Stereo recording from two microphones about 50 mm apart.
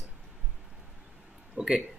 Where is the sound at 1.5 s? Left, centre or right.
Centre.